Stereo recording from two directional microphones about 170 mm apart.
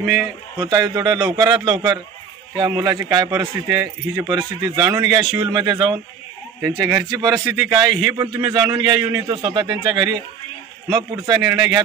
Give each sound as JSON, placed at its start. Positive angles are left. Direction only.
{"t": 0.0, "sound": "a man's voice", "side_deg": 0}
{"t": 0.6, "sound": "a man's voice", "side_deg": -20}
{"t": 6.6, "sound": "a man's voice", "side_deg": -15}